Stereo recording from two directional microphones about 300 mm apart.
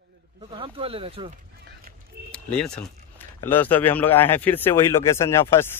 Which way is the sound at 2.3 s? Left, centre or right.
Centre.